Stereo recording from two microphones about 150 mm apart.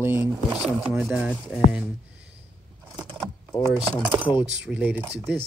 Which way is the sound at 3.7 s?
5° right (ahead or behind).